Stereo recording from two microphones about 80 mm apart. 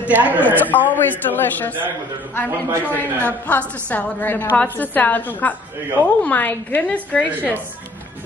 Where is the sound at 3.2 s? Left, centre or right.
Left.